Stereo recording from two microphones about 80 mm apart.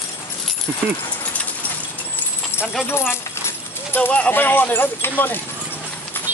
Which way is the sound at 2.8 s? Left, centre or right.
Left.